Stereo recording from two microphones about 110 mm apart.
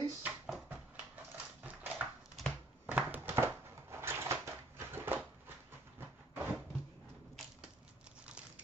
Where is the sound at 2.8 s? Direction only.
15° right (ahead or behind).